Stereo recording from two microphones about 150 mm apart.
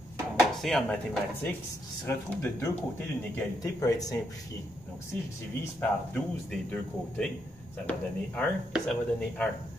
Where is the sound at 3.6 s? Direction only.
20° left (ahead or behind).